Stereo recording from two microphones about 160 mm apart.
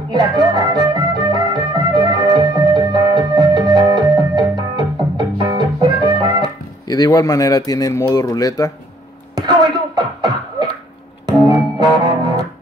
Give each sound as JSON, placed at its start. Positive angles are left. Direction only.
{"t": 0.1, "sound": "music", "side_deg": -25}
{"t": 6.9, "sound": "speech", "side_deg": 25}
{"t": 9.3, "sound": "beatboxing", "side_deg": -25}
{"t": 11.2, "sound": "music", "side_deg": -25}